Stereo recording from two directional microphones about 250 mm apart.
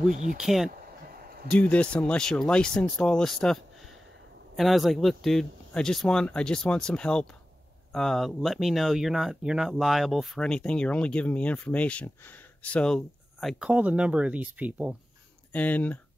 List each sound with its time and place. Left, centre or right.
0.1 s speech: right
0.4 s speech: centre
15.5 s speech: centre